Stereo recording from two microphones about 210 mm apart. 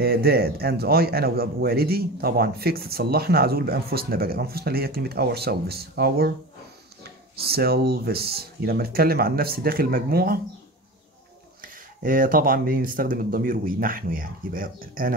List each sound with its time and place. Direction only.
0.0 s a man's voice: 45° right (ahead or behind)
11.6 s a man's voice: 40° right (ahead or behind)